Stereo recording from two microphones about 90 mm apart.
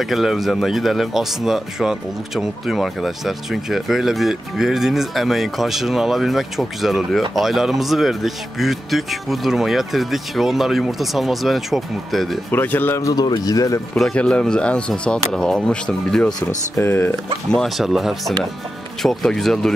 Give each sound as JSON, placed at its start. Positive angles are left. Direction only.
{"t": 0.0, "sound": "speech", "side_deg": 0}
{"t": 12.4, "sound": "speech", "side_deg": 20}
{"t": 13.0, "sound": "speech", "side_deg": 50}
{"t": 13.9, "sound": "speech", "side_deg": 5}
{"t": 16.3, "sound": "speech", "side_deg": 50}
{"t": 16.8, "sound": "speech", "side_deg": 25}
{"t": 17.5, "sound": "speech", "side_deg": 5}